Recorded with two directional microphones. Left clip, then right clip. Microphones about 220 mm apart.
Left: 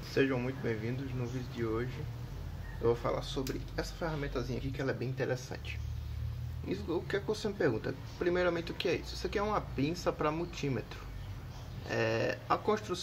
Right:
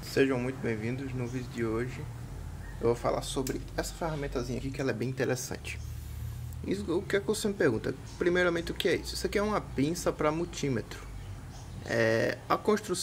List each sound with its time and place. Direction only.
0.1 s speech: 20° right (ahead or behind)
4.8 s speech: 35° right (ahead or behind)